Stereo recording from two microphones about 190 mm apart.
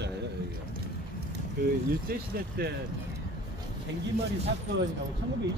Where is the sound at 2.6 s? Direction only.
55° right (ahead or behind).